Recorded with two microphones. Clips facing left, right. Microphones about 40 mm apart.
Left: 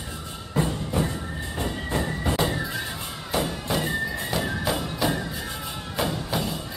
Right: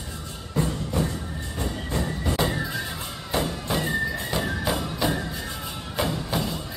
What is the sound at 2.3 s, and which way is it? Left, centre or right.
Music, centre.